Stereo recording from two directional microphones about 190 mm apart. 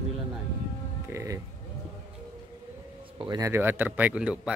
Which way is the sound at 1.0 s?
15° right (ahead or behind).